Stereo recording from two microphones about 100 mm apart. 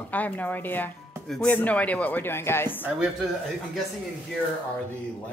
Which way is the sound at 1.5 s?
15° left (ahead or behind).